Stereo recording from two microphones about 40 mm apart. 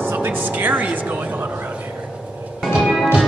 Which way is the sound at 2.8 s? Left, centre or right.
Centre.